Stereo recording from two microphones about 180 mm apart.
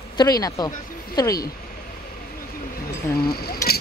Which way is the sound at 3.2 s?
55° left (ahead or behind).